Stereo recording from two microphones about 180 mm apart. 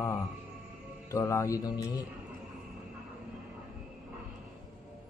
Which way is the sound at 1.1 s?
15° left (ahead or behind).